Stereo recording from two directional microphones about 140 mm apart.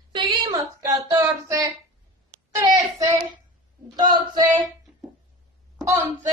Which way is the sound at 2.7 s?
25° right (ahead or behind).